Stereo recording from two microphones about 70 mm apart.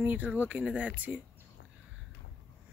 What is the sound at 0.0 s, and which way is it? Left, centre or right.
Speech, right.